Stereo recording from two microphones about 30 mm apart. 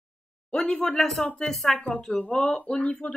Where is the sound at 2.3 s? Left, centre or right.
Left.